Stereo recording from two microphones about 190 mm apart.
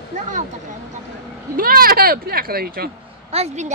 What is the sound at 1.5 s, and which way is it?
Speech, 50° right (ahead or behind).